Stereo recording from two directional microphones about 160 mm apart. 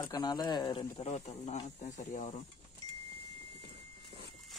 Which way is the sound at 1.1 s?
45° left (ahead or behind).